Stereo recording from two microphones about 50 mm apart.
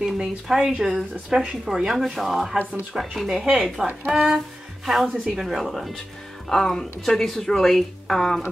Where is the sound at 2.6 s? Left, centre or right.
Right.